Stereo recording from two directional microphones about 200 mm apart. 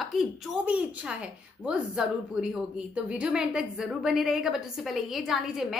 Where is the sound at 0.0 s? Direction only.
Centre (ahead or behind).